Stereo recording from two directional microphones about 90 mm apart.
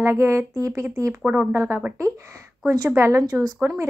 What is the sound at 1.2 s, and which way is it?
Speech, 15° right (ahead or behind).